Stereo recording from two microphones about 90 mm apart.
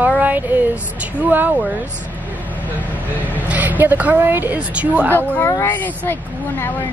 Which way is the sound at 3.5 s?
20° right (ahead or behind).